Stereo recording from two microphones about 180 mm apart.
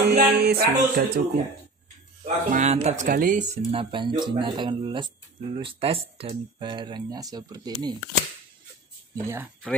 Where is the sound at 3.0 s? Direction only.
50° right (ahead or behind); by 8.0 s 25° right (ahead or behind).